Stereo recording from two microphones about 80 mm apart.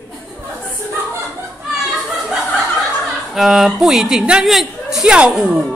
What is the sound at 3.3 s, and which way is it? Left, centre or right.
A woman's voice, centre.